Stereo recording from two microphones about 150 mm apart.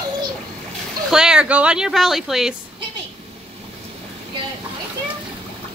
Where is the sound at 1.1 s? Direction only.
5° right (ahead or behind).